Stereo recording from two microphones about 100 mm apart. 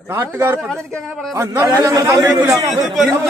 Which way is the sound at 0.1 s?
25° right (ahead or behind).